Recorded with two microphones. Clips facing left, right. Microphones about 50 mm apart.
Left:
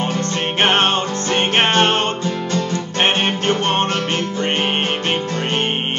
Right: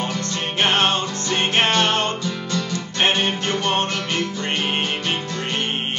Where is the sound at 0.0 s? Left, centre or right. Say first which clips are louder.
Left 4 dB; left.